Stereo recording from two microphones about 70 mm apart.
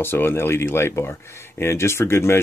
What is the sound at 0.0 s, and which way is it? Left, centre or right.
Speech, left.